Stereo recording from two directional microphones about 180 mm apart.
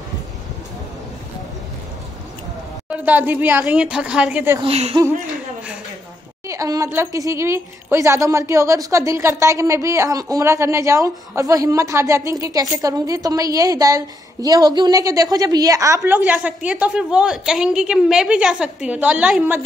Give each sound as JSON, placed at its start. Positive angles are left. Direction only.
{"t": 2.9, "sound": "a woman's voice", "side_deg": -10}
{"t": 4.6, "sound": "speech", "side_deg": -35}
{"t": 6.4, "sound": "a woman's voice", "side_deg": -20}